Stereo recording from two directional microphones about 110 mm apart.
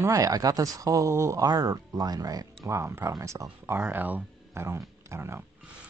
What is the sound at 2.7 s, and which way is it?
Speech, 25° right (ahead or behind).